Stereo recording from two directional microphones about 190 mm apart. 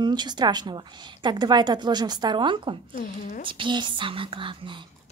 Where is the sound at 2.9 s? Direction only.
50° left (ahead or behind).